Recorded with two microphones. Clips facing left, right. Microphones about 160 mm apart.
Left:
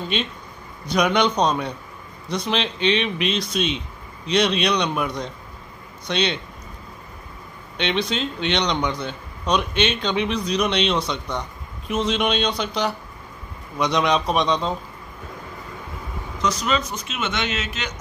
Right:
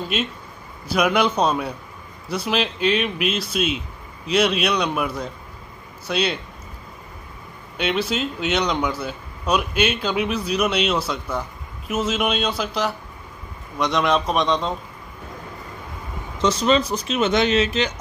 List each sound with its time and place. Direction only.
0.1 s speech: 5° right (ahead or behind)
7.7 s speech: 5° right (ahead or behind)
16.3 s speech: 30° right (ahead or behind)